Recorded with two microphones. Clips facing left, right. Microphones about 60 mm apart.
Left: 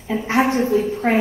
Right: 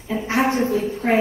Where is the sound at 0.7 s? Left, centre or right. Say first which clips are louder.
Left 4 dB; left.